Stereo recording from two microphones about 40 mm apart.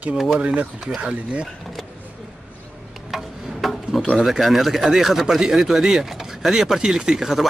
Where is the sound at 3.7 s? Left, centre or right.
Centre.